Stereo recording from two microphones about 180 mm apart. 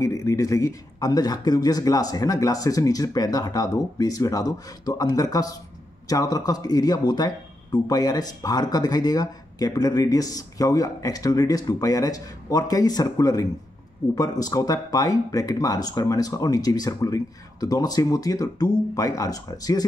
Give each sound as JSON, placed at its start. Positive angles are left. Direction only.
{"t": 0.0, "sound": "speech", "side_deg": 15}